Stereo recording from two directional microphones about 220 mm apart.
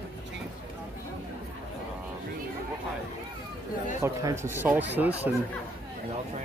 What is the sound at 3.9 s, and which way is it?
Speech, 10° right (ahead or behind).